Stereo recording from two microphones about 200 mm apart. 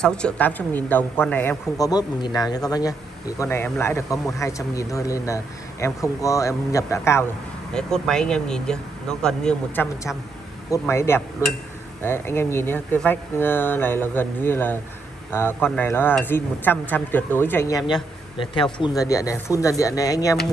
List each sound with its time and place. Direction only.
0.0 s speech: 5° left (ahead or behind)
7.7 s speech: 5° left (ahead or behind)